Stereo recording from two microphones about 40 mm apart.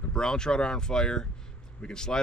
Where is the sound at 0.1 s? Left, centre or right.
Centre.